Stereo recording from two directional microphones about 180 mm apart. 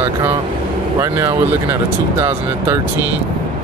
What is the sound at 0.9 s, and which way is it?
Speech, 15° right (ahead or behind).